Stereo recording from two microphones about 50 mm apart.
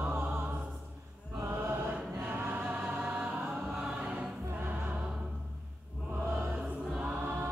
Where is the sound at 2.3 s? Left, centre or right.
Right.